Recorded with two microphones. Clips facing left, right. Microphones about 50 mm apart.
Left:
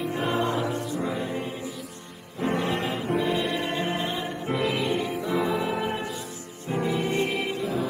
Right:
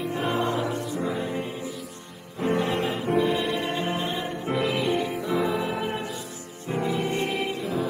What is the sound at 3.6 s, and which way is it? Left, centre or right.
Music, left.